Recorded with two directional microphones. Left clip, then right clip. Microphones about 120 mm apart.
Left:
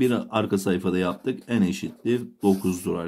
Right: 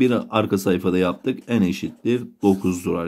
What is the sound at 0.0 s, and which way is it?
Speech, 30° right (ahead or behind).